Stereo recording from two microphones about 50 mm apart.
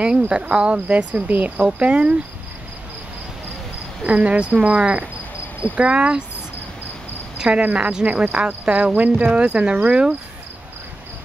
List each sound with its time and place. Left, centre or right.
0.3 s cricket: centre
4.0 s cricket: right
7.3 s speech: right
7.6 s cricket: right